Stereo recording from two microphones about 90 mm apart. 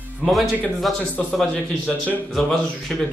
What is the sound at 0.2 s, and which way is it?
Speech, centre (ahead or behind).